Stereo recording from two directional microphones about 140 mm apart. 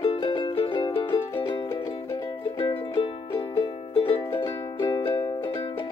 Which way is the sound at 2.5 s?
40° left (ahead or behind).